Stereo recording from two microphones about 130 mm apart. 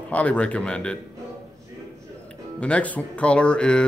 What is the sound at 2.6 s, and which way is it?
Speech, 10° left (ahead or behind).